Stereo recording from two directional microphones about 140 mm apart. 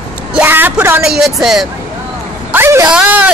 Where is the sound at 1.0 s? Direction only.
5° right (ahead or behind).